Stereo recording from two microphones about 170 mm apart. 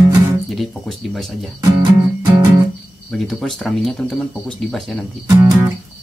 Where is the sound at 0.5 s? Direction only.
Centre (ahead or behind).